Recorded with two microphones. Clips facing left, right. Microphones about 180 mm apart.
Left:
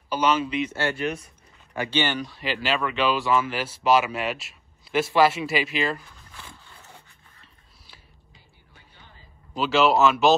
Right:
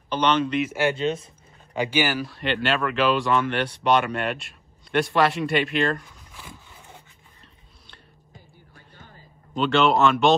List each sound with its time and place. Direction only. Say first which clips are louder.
0.1 s speech: right 1 dB; 5° left (ahead or behind)
0.7 s speech: right 4 dB; 15° right (ahead or behind)
1.7 s speech: right 2 dB; 10° right (ahead or behind)
6.4 s a sound: right 4 dB; 5° right (ahead or behind)
8.9 s a sound: right 5 dB; 45° right (ahead or behind)
9.6 s speech: even; 5° left (ahead or behind)